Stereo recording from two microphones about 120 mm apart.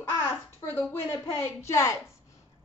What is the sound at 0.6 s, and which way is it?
Speech, 15° left (ahead or behind).